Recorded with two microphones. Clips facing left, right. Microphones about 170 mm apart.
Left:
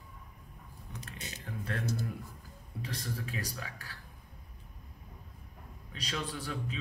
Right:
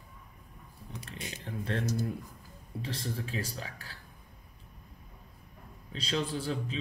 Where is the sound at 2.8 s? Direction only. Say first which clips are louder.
Right 2 dB; 30° right (ahead or behind).